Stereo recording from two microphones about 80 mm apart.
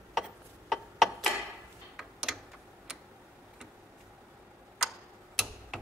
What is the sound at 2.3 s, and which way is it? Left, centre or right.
Typing, centre.